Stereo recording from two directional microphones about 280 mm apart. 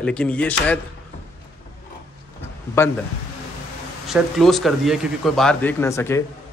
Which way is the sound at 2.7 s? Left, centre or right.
Centre.